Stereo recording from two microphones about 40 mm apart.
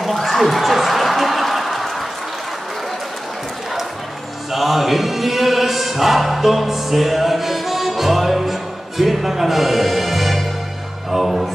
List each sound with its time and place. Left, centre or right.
0.0 s a sound: centre
4.5 s music: centre
11.1 s speech: centre